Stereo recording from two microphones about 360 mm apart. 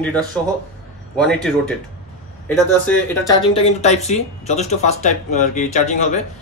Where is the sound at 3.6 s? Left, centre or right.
Centre.